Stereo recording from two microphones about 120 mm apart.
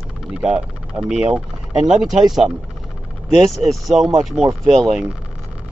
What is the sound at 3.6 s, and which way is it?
Speech, centre (ahead or behind).